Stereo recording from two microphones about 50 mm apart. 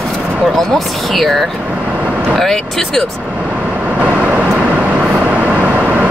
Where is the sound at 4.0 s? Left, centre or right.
Right.